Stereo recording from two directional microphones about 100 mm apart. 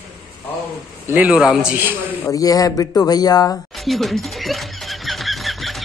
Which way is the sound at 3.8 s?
Centre (ahead or behind).